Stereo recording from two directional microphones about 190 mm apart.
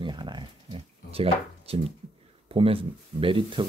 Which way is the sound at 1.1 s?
30° right (ahead or behind).